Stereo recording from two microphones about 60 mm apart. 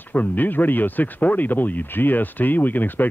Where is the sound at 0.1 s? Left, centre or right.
Left.